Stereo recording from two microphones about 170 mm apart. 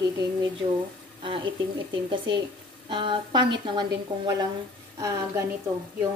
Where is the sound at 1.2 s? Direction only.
30° right (ahead or behind).